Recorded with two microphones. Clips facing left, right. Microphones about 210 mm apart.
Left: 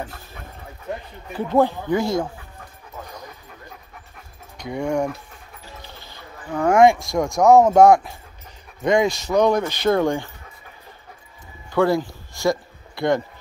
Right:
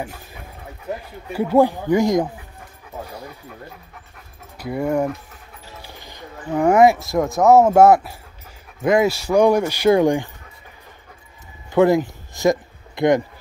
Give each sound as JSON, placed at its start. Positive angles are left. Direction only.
{"t": 0.0, "sound": "speech", "side_deg": -10}
{"t": 4.6, "sound": "speech", "side_deg": -5}
{"t": 11.7, "sound": "a sound", "side_deg": -20}